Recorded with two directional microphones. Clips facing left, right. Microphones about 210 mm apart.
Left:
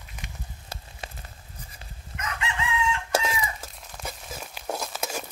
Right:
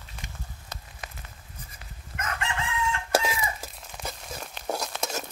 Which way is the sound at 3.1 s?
5° right (ahead or behind).